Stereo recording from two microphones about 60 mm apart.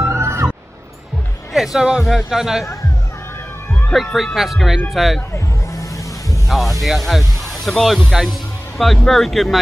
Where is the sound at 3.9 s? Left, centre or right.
Centre.